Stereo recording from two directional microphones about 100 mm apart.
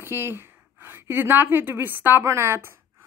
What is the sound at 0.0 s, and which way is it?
A woman's voice, 25° right (ahead or behind).